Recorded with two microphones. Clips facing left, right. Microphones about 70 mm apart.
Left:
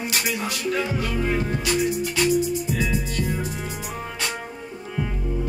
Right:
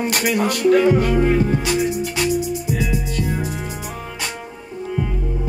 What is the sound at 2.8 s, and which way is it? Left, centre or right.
Music, centre.